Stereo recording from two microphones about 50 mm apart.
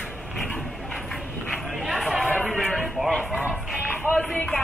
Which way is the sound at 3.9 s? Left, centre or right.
Left.